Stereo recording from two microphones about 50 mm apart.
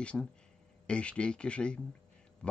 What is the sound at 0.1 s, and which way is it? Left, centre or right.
Speech, centre.